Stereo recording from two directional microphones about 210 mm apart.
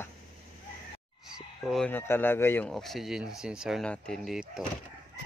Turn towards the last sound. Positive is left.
turn(degrees=0)  # may be behind; listen again after turning